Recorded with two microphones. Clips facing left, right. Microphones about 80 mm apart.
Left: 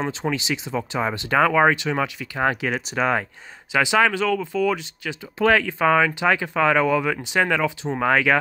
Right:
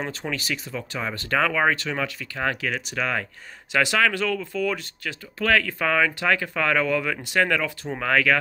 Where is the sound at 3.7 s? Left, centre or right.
Centre.